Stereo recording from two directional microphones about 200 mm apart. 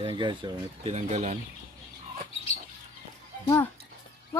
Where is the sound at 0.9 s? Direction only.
35° right (ahead or behind).